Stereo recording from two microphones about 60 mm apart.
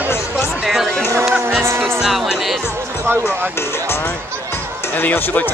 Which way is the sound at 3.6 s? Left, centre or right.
Left.